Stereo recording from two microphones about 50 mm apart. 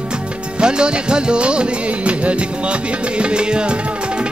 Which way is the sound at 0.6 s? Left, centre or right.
Centre.